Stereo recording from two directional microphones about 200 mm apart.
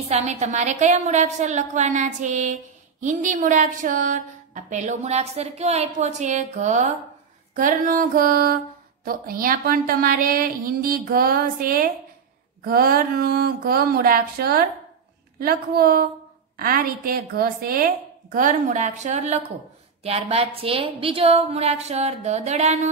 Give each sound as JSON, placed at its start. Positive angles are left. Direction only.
{"t": 0.1, "sound": "a woman's voice", "side_deg": -35}